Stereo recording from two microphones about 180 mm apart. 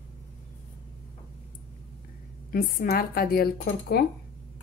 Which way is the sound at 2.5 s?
55° left (ahead or behind).